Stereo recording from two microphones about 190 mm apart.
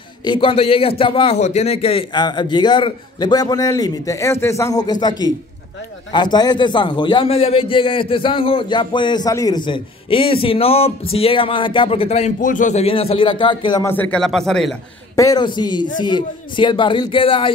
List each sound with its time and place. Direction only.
0.2 s a man's voice: 25° left (ahead or behind)
14.1 s speech: centre (ahead or behind)
15.1 s a man's voice: 20° left (ahead or behind)